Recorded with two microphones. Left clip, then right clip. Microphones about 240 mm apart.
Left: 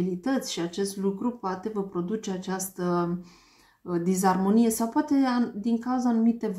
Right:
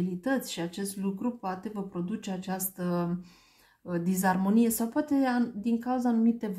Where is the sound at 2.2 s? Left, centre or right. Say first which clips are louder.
Left 3 dB; right.